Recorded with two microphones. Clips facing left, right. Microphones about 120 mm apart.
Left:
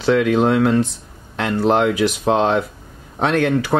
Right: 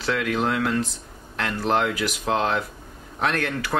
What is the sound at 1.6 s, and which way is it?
Speech, 25° left (ahead or behind).